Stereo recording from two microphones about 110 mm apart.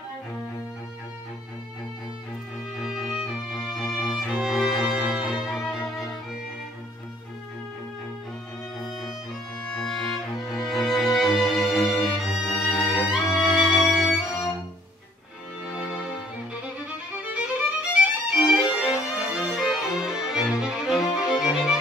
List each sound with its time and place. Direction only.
2.8 s music: 5° right (ahead or behind)
8.7 s music: centre (ahead or behind)
16.8 s violin: 10° right (ahead or behind)